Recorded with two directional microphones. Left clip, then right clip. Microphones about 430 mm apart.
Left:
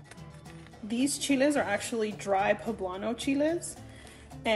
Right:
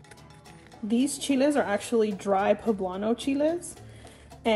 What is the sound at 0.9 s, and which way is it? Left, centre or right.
Speech, centre.